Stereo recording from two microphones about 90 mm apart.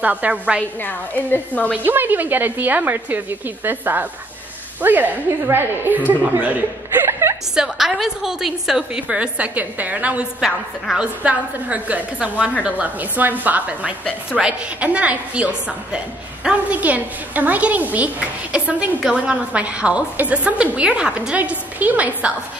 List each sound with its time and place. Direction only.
0.0 s a woman's voice: 15° right (ahead or behind)
0.7 s a woman's voice: 20° left (ahead or behind)
1.9 s a woman's voice: 20° right (ahead or behind)
7.5 s a woman's voice: 5° right (ahead or behind)